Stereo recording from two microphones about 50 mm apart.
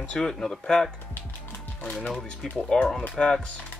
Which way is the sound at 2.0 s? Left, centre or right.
Centre.